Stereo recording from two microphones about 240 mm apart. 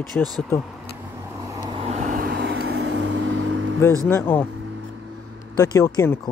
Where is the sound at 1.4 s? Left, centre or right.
Centre; by 3.1 s right.